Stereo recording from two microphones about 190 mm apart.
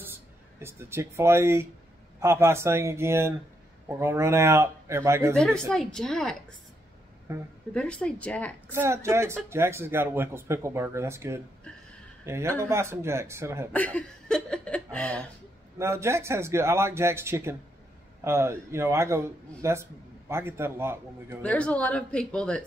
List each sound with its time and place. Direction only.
0.6 s a man's voice: 15° right (ahead or behind)
5.3 s speech: 5° left (ahead or behind)
7.3 s a man's voice: 15° right (ahead or behind)
7.7 s speech: 5° left (ahead or behind)
8.7 s a man's voice: 15° right (ahead or behind)
13.7 s speech: 5° left (ahead or behind)
15.8 s a man's voice: 15° right (ahead or behind)
21.4 s speech: 5° left (ahead or behind)